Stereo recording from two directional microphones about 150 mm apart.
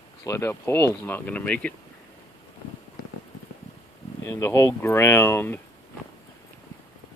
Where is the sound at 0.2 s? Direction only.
20° left (ahead or behind).